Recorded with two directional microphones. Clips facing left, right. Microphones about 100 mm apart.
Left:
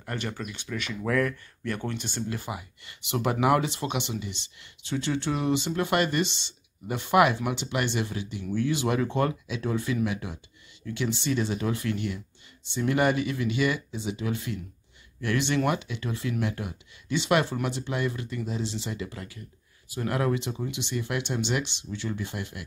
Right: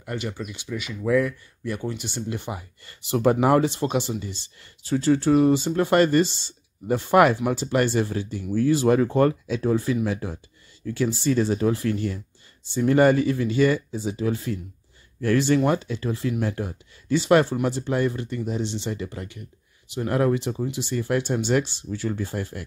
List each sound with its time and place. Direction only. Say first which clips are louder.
0.0 s speech: right 3 dB; 10° right (ahead or behind); by 22.6 s 35° right (ahead or behind)